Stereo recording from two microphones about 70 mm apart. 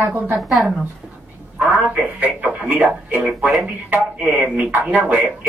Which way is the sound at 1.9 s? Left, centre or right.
Right.